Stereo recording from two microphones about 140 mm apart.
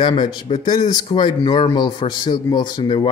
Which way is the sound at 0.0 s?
35° left (ahead or behind).